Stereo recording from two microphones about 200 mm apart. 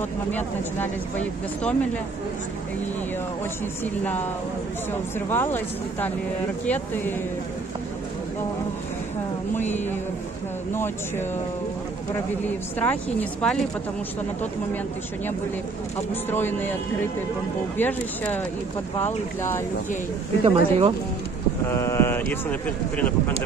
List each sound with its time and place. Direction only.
0.3 s speech: 10° left (ahead or behind)
3.8 s speech: 10° left (ahead or behind)
5.3 s speech: 10° left (ahead or behind)
10.7 s speech: 10° left (ahead or behind)
12.4 s speech: 10° left (ahead or behind)
16.1 s speech: 10° left (ahead or behind)
20.4 s speech: 30° right (ahead or behind)
21.6 s speech: 10° left (ahead or behind)